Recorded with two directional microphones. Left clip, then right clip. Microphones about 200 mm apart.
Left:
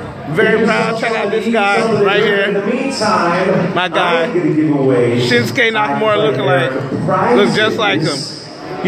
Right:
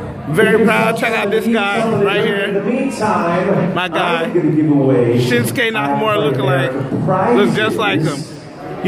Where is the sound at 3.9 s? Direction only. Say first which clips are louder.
Left 2 dB; 10° left (ahead or behind).